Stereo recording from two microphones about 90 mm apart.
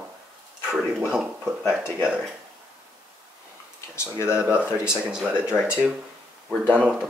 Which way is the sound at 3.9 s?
30° left (ahead or behind).